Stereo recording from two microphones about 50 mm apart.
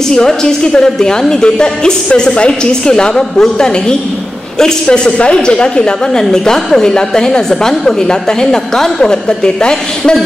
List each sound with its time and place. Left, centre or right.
0.1 s a woman's voice: centre